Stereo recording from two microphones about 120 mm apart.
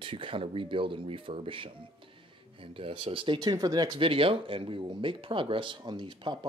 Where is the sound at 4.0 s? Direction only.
50° right (ahead or behind).